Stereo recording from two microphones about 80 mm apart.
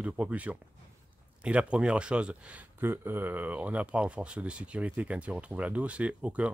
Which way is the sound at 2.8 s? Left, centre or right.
Right.